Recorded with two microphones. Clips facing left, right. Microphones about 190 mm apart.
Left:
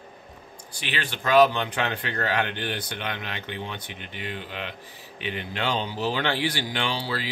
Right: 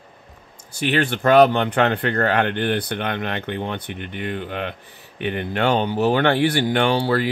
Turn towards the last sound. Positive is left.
turn(degrees=-55)  # may be behind; listen again after turning